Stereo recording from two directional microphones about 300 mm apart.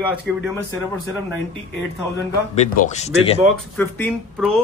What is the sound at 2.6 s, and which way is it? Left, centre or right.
Speech, left.